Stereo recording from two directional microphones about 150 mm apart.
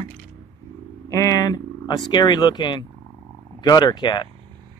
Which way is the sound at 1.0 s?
20° left (ahead or behind).